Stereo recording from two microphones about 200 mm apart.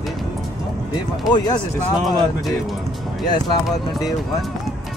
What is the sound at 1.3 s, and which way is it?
Speech, 20° left (ahead or behind).